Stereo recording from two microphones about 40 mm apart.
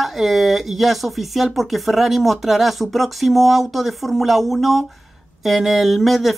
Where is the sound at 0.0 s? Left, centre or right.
Centre.